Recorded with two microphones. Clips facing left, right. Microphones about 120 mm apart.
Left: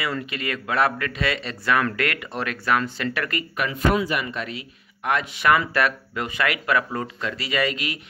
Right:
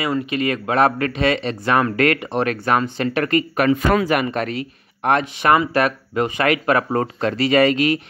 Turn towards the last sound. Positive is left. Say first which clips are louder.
# right 10 dB
turn(degrees=-45)  # may be behind; listen again after turning